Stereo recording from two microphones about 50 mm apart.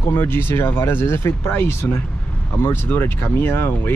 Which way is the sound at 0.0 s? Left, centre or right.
Left.